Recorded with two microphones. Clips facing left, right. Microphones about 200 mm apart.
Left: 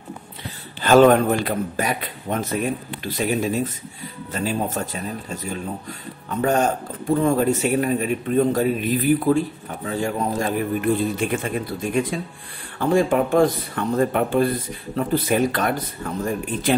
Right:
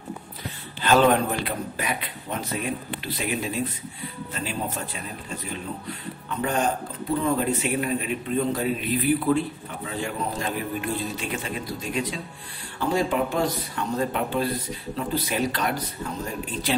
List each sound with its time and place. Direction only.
0.8 s a man's voice: 50° left (ahead or behind)